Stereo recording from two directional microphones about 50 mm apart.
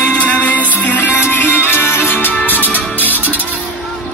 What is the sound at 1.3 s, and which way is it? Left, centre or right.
Music, left.